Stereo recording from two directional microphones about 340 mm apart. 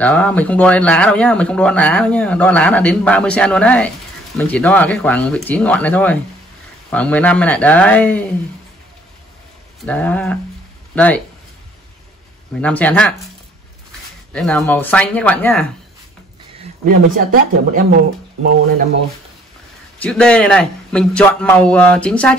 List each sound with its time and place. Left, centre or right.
0.0 s speech: centre
9.8 s speech: centre
12.5 s speech: centre
14.3 s speech: centre
16.8 s speech: right
20.0 s speech: centre